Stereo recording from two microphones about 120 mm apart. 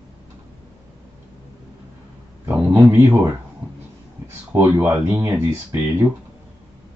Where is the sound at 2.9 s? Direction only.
20° right (ahead or behind).